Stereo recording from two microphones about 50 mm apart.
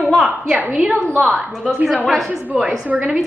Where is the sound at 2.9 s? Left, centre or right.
Right.